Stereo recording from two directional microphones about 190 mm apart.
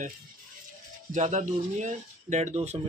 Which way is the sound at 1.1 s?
40° right (ahead or behind).